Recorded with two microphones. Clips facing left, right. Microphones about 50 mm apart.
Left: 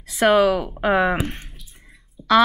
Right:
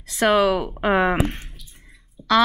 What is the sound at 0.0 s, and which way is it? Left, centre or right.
Speech, centre.